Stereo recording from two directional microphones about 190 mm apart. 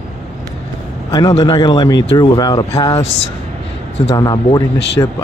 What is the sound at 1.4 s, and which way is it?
Speech, 20° left (ahead or behind).